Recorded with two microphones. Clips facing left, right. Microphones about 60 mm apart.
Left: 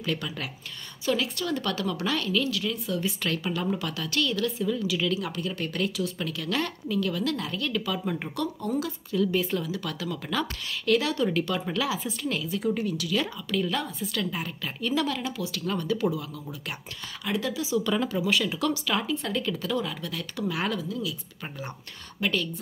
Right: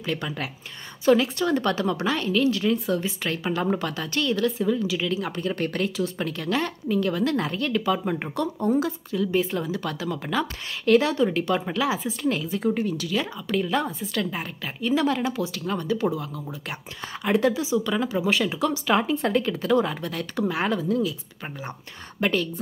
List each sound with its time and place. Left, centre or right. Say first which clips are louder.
0.0 s speech: right 2 dB; right
3.6 s speech: right 4 dB; right
9.6 s a woman's voice: right 4 dB; right
17.8 s speech: right 1 dB; centre
18.1 s speech: right 3 dB; right
22.2 s speech: right 4 dB; right